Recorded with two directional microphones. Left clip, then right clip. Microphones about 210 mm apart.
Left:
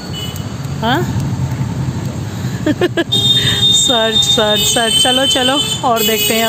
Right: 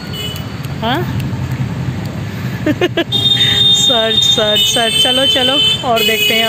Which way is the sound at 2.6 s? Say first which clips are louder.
Even; 10° left (ahead or behind).